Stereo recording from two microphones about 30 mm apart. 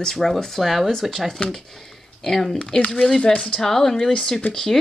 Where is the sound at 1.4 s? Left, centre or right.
Left.